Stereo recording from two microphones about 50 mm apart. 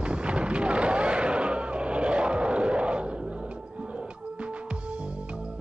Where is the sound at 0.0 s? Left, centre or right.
Right.